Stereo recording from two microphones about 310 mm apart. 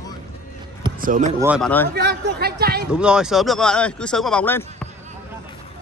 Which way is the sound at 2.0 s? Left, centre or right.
Right.